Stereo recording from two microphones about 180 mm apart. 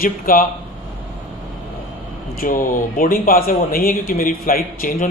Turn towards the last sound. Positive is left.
turn(degrees=50)  # may be behind; listen again after turning